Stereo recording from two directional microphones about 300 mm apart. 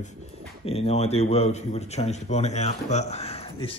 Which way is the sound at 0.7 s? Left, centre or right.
Centre.